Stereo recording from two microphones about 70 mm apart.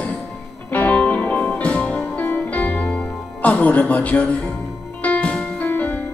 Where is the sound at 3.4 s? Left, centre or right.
Left.